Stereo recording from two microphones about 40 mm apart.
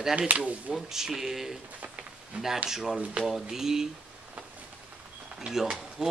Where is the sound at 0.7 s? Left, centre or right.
Centre.